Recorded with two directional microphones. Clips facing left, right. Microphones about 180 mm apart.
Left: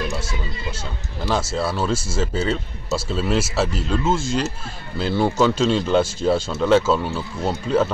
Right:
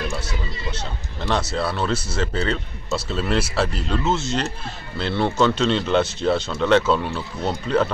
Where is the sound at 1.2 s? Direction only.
5° left (ahead or behind).